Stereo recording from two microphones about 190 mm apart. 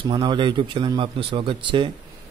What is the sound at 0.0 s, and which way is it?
Speech, 25° right (ahead or behind).